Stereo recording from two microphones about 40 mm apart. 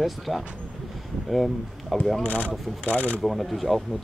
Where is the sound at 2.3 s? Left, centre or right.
Left.